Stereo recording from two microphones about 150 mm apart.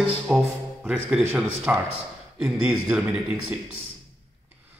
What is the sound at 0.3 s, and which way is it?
A man's voice, 5° right (ahead or behind).